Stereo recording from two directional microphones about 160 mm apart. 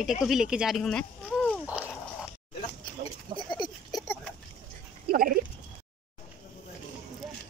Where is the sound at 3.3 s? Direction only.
30° left (ahead or behind).